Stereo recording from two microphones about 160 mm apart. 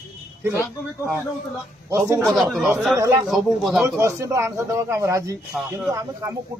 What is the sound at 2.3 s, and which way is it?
Speech, centre (ahead or behind).